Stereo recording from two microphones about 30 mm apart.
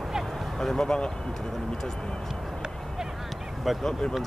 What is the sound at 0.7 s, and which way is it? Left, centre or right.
Speech, left.